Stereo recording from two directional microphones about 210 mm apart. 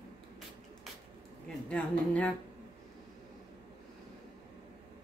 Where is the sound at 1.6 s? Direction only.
5° left (ahead or behind).